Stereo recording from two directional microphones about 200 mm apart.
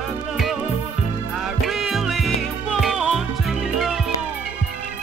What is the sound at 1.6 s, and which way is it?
Music, centre (ahead or behind).